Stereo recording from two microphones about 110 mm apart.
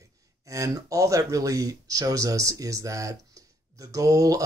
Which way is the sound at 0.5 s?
30° right (ahead or behind).